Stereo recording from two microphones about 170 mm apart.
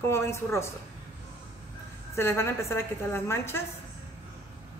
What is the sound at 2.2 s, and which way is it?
A woman's voice, 15° left (ahead or behind).